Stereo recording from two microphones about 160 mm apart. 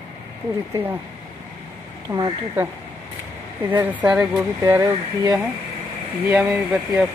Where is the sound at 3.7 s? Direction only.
10° right (ahead or behind).